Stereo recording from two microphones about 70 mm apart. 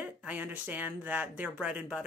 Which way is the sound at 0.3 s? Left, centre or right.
Right.